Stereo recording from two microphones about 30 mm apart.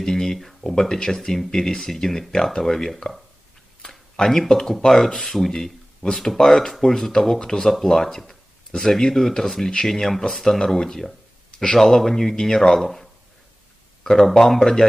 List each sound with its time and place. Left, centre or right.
0.0 s speech: centre
4.2 s speech: centre